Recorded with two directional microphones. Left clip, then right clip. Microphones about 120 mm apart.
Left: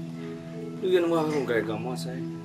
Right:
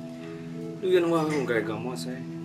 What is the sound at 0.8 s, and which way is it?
Speech, 5° right (ahead or behind).